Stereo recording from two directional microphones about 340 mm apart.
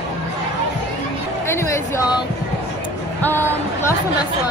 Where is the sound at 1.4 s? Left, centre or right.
Centre.